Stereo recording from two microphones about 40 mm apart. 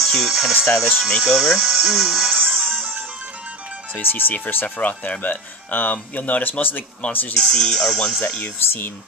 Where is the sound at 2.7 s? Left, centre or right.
Right.